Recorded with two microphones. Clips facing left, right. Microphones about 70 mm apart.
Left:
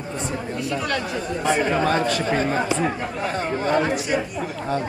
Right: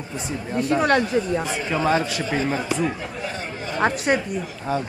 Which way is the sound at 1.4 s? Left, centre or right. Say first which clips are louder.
Left 3 dB; left.